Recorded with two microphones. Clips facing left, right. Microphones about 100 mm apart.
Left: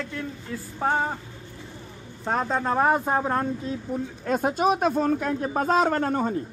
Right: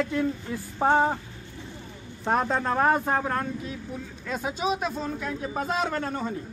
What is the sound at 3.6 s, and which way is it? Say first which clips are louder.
Speech: left 6 dB; 40° left (ahead or behind).